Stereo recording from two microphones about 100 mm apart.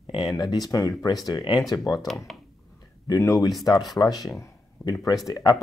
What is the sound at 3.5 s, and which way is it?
Speech, centre (ahead or behind).